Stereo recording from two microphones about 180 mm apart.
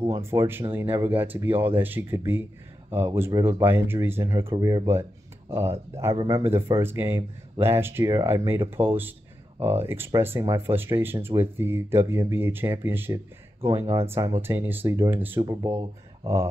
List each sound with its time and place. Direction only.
0.1 s speech: 15° right (ahead or behind)
3.4 s speech: 10° right (ahead or behind)